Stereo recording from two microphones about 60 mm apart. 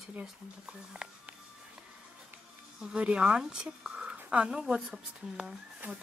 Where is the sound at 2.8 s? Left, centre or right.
Centre.